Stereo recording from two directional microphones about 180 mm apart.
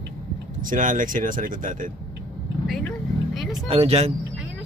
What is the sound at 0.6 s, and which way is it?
Speech, 50° right (ahead or behind).